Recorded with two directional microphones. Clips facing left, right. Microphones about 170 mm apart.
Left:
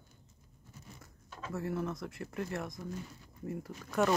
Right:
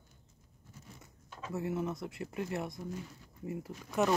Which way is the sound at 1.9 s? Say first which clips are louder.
Right 1 dB; 25° right (ahead or behind).